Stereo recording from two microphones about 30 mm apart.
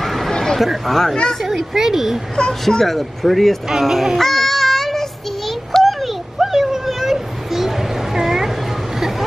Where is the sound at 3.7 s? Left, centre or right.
Centre.